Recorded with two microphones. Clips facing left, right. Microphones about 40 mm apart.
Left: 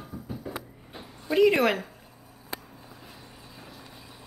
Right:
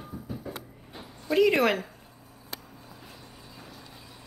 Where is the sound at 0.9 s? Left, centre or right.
Centre.